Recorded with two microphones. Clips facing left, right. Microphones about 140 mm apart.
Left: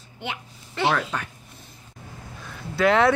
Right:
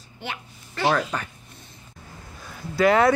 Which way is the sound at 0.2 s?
20° left (ahead or behind).